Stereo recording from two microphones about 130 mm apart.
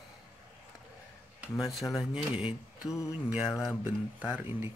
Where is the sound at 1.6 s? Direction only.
Centre (ahead or behind).